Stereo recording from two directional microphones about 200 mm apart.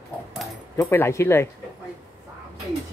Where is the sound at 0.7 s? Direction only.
10° left (ahead or behind).